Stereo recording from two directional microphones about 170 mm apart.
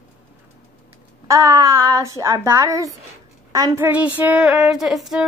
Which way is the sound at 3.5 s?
20° right (ahead or behind).